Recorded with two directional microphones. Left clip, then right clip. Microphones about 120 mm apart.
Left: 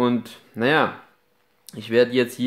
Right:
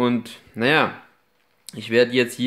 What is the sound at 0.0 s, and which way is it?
Speech, 5° right (ahead or behind).